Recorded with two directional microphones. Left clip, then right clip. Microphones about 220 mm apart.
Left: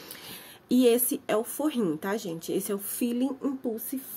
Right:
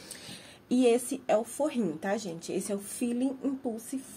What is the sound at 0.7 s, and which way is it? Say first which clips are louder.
Speech: left 3 dB; 50° left (ahead or behind).